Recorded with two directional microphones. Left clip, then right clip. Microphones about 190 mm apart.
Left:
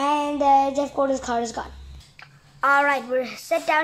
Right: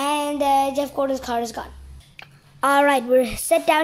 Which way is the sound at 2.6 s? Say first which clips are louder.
Right 2 dB; 90° right.